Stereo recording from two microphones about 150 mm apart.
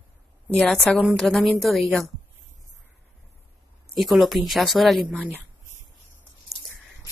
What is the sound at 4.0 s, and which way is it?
A woman's voice, centre (ahead or behind).